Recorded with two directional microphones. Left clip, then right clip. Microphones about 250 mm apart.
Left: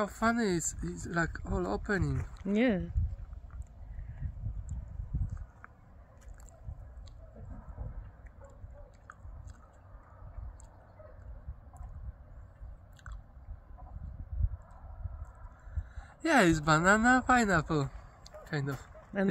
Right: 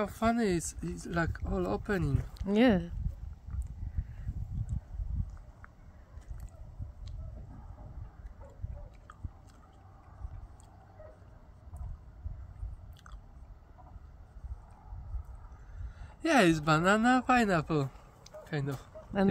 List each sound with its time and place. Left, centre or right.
0.0 s speech: centre
16.0 s speech: centre